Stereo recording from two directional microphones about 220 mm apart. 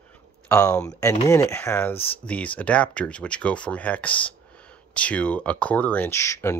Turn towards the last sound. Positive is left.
turn(degrees=15)  # may be behind; listen again after turning